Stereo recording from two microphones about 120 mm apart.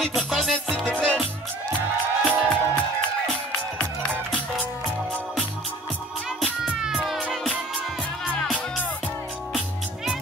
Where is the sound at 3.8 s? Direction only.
5° left (ahead or behind).